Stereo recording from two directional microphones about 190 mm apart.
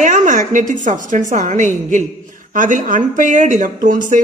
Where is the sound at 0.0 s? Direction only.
40° right (ahead or behind).